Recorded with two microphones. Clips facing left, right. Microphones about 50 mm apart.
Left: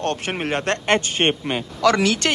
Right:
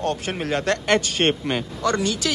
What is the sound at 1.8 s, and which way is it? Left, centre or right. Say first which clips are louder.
Speech: left 7 dB; left.